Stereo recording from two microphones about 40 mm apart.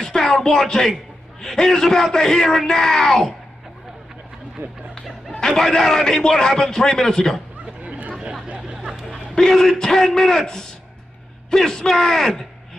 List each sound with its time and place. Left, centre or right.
0.0 s a sound: centre
0.7 s a man's voice: centre
4.6 s speech: right
5.4 s a man's voice: centre
8.5 s a sound: centre
9.3 s a man's voice: centre